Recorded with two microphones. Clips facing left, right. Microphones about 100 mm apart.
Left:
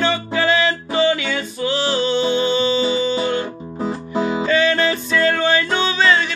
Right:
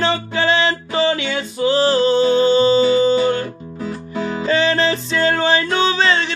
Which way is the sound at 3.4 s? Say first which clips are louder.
Left 2 dB; 25° left (ahead or behind).